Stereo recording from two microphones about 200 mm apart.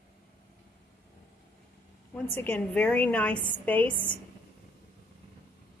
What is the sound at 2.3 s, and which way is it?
A woman's voice, 10° left (ahead or behind).